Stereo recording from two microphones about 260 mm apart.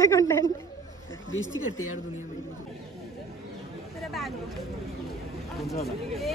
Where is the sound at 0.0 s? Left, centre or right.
Centre.